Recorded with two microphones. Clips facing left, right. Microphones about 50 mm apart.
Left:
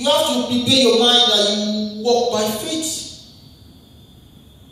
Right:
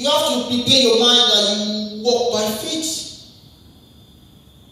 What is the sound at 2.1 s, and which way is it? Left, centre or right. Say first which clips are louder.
Speech: left 2 dB; centre.